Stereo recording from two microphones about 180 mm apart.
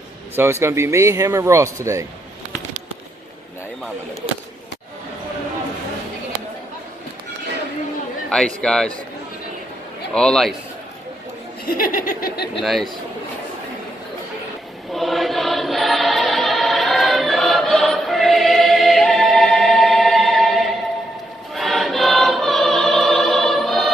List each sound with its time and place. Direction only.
0.4 s speech: 15° right (ahead or behind)
8.3 s a man's voice: 5° left (ahead or behind)
10.1 s a man's voice: 5° left (ahead or behind)
11.6 s laughter: 50° left (ahead or behind)
12.6 s a man's voice: centre (ahead or behind)
14.9 s chant: centre (ahead or behind)
21.5 s choir: centre (ahead or behind)